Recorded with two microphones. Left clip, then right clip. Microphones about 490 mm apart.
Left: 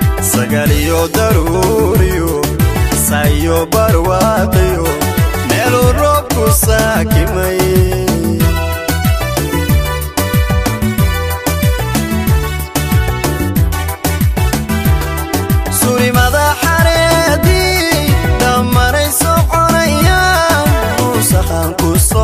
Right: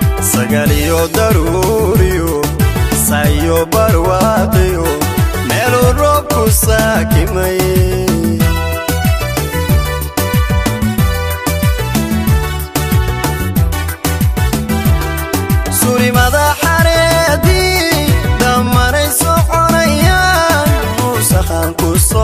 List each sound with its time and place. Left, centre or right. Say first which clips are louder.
0.4 s music: right 1 dB; right
15.9 s music: even; right